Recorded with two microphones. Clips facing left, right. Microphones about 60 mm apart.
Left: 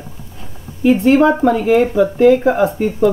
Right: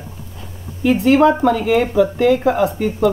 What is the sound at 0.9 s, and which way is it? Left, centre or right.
Speech, left.